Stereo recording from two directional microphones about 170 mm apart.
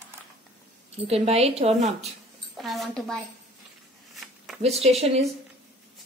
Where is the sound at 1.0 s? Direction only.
35° right (ahead or behind).